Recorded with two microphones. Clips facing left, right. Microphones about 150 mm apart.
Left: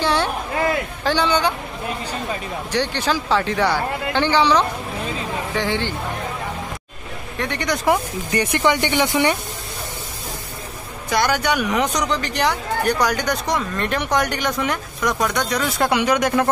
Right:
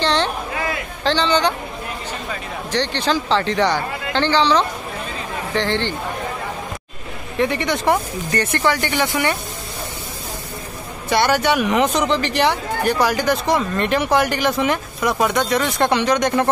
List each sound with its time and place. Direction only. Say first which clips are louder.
0.0 s a sound: right 1 dB; 10° left (ahead or behind)
1.0 s speech: right 2 dB; 10° left (ahead or behind)
2.7 s speech: right 1 dB; 10° left (ahead or behind)
7.3 s speech: right 4 dB; 5° right (ahead or behind)
7.8 s speech: right 1 dB; 10° left (ahead or behind)
11.1 s speech: right 3 dB; centre (ahead or behind)